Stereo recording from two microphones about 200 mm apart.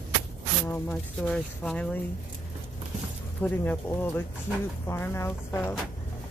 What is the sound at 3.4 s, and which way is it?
Speech, 10° left (ahead or behind).